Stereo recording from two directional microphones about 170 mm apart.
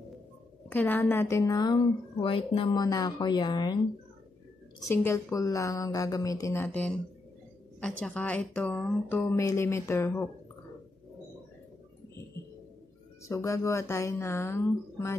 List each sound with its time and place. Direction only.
0.7 s a woman's voice: 10° left (ahead or behind)
4.7 s a woman's voice: 15° left (ahead or behind)
13.2 s a woman's voice: 20° left (ahead or behind)